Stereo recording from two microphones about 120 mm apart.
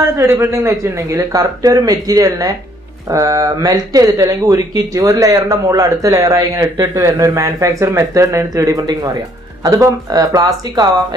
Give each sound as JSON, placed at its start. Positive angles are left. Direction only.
{"t": 0.2, "sound": "speech", "side_deg": -20}